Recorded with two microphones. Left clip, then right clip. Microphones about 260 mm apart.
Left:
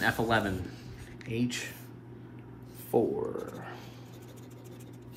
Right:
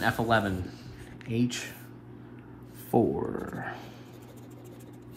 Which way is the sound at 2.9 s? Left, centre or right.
Right.